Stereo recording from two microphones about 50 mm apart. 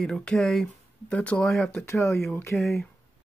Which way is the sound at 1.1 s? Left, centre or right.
Left.